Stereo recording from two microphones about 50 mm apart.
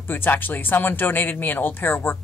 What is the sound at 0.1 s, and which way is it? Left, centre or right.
A woman's voice, left.